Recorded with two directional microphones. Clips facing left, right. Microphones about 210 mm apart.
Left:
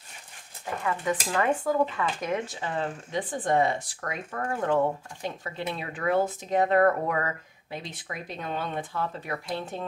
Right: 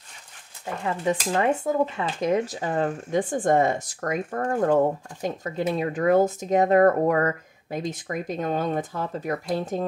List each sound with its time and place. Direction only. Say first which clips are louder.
0.8 s speech: right 4 dB; 30° right (ahead or behind)